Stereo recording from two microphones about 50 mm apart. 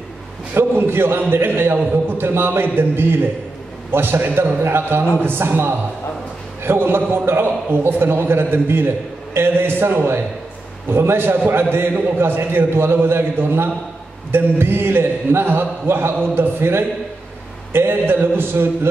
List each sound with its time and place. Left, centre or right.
0.6 s a man's voice: right